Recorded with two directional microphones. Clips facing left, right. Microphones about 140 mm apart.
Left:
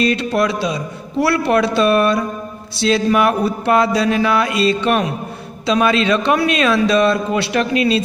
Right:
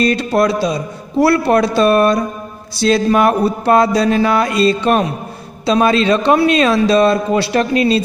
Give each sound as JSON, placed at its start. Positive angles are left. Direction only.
{"t": 0.0, "sound": "speech", "side_deg": -40}